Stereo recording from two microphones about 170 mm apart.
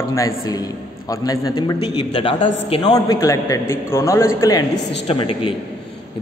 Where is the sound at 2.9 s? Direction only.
20° left (ahead or behind).